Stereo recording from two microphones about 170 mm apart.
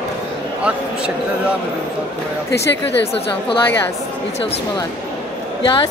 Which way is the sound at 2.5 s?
90° left.